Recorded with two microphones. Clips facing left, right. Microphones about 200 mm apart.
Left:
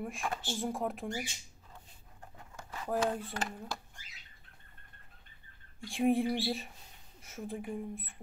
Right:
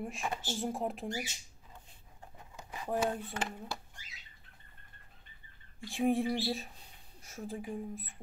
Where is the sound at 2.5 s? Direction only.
15° right (ahead or behind).